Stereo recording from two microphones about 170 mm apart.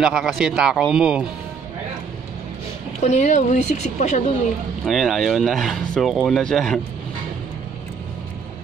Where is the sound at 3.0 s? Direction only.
45° left (ahead or behind).